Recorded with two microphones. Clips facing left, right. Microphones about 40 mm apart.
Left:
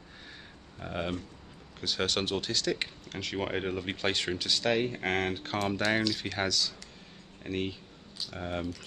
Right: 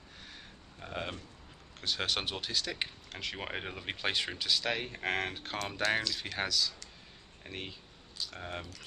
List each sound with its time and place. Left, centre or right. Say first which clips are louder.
0.7 s speech: left 5 dB; centre